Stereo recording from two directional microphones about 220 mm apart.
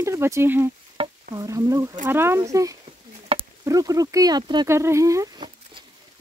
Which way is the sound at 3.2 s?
20° right (ahead or behind).